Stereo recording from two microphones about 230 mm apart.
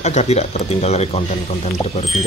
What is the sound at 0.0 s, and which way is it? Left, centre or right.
Speech, left.